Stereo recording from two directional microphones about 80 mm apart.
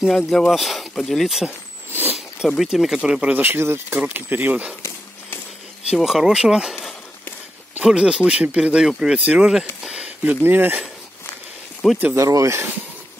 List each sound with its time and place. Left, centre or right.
0.1 s speech: centre
5.9 s speech: centre
7.8 s speech: centre
9.8 s a sound: centre
10.2 s speech: right
11.8 s speech: centre
12.2 s speech: right